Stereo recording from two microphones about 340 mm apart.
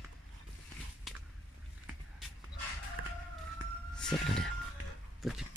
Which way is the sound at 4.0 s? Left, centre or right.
Centre.